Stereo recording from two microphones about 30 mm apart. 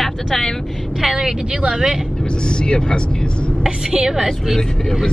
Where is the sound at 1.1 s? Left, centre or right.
Centre.